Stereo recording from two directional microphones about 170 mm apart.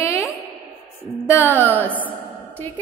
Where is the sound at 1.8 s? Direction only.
10° right (ahead or behind).